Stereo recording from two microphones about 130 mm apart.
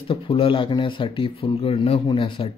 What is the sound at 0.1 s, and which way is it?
Speech, 45° left (ahead or behind).